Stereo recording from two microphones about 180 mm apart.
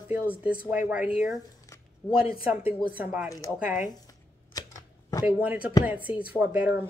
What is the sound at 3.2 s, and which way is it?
Speech, 20° left (ahead or behind).